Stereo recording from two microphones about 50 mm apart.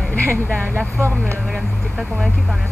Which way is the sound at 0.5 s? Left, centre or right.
Right.